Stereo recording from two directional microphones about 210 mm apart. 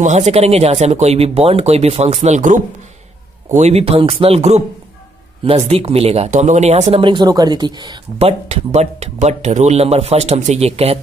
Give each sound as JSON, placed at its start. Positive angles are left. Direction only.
{"t": 0.0, "sound": "speech", "side_deg": -35}